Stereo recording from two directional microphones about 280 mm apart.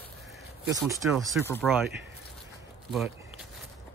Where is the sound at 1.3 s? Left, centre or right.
Centre.